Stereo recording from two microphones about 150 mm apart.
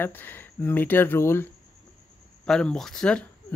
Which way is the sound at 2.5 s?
5° left (ahead or behind).